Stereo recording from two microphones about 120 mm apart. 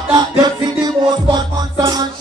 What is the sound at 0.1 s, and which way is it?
Music, 35° right (ahead or behind).